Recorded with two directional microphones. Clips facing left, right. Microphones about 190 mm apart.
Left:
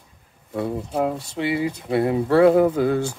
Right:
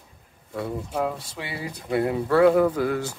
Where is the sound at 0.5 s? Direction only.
25° left (ahead or behind).